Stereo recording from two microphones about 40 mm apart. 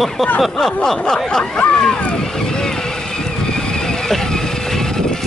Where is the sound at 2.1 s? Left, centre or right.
Centre.